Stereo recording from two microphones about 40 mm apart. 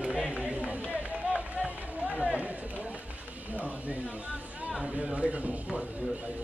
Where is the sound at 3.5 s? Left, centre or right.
Right.